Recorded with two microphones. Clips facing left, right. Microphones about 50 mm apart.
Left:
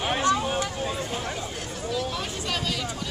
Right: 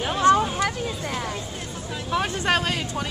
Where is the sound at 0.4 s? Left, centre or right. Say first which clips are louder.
Right 3 dB; right.